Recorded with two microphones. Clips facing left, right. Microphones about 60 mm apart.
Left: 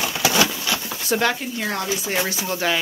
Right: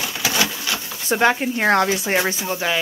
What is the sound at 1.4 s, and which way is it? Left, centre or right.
Speech, right.